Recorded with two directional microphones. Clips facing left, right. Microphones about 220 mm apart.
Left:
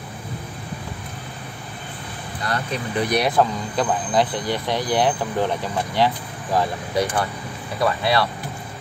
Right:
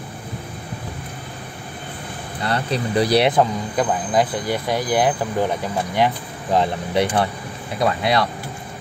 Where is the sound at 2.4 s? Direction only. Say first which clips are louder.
Right 4 dB; 35° right (ahead or behind).